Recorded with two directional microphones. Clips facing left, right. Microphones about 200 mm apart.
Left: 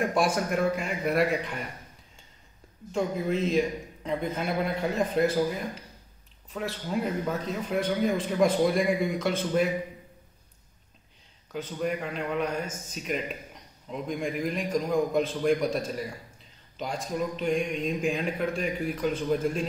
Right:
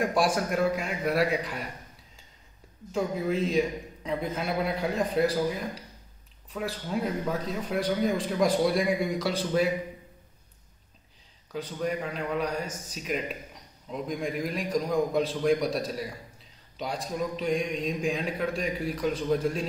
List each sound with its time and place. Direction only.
0.0 s a man's voice: centre (ahead or behind)
2.9 s a man's voice: centre (ahead or behind)
6.5 s a man's voice: centre (ahead or behind)
11.5 s a man's voice: centre (ahead or behind)